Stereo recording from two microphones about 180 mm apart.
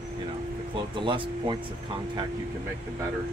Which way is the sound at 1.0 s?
30° right (ahead or behind).